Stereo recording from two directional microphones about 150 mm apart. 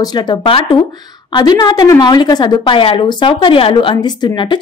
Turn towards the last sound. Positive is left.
turn(degrees=30)  # may be behind; listen again after turning